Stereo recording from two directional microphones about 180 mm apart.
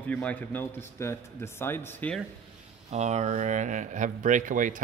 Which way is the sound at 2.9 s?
40° right (ahead or behind).